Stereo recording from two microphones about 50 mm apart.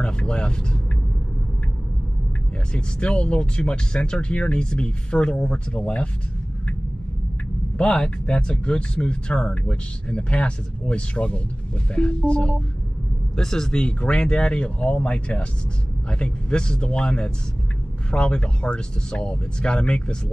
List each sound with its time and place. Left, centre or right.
0.0 s speech: centre
2.7 s speech: left
7.7 s speech: centre